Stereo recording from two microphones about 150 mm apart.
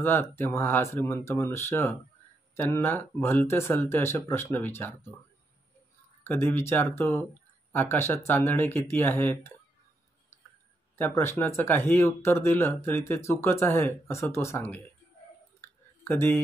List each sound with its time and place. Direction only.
0.0 s speech: 15° left (ahead or behind)
6.2 s speech: 15° left (ahead or behind)
11.0 s speech: 15° left (ahead or behind)
15.6 s a sound: 15° left (ahead or behind)